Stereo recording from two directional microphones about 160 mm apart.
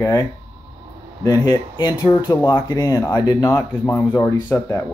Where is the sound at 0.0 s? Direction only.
20° left (ahead or behind).